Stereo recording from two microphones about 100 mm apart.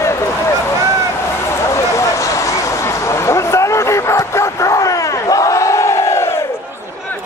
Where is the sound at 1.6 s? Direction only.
30° left (ahead or behind).